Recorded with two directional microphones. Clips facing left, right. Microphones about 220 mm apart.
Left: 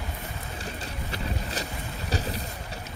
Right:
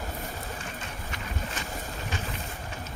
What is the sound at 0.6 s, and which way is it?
Vehicle, 35° left (ahead or behind).